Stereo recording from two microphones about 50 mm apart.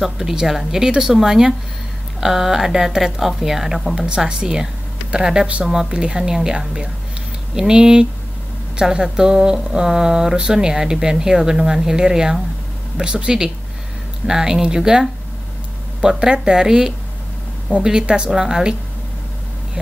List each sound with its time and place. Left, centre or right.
0.0 s speech: centre